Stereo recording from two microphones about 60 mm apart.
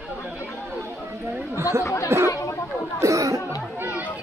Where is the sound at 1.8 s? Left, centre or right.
Left.